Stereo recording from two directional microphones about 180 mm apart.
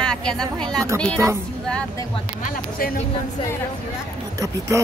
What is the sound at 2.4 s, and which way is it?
Speech, 55° left (ahead or behind).